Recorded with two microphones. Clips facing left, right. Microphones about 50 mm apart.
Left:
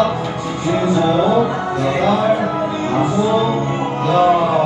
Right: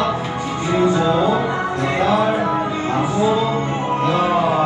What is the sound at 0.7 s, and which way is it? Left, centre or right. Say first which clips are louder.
Music: left 1 dB; right.